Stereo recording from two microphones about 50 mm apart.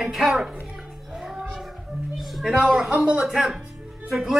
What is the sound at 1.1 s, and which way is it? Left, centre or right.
Music, centre.